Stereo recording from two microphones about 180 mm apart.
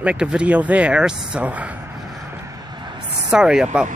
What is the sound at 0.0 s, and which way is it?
Speech, 5° right (ahead or behind).